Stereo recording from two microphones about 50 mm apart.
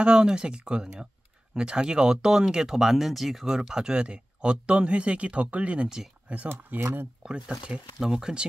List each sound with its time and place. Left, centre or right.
0.0 s speech: centre
6.8 s speech: right
7.2 s speech: centre
8.0 s speech: centre